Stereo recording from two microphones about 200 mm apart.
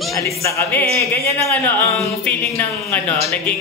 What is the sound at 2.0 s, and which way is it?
Music, 5° left (ahead or behind).